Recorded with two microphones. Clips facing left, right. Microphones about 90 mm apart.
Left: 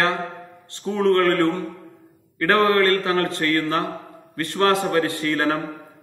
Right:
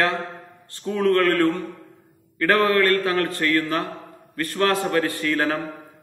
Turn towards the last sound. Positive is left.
turn(degrees=30)  # may be behind; listen again after turning